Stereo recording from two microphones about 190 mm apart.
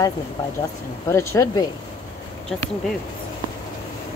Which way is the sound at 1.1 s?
15° left (ahead or behind).